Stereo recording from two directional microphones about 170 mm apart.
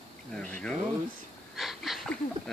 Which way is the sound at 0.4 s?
5° left (ahead or behind).